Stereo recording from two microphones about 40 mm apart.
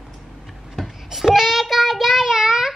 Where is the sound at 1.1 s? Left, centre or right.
Centre.